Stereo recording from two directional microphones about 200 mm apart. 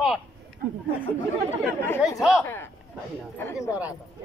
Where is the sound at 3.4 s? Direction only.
15° left (ahead or behind).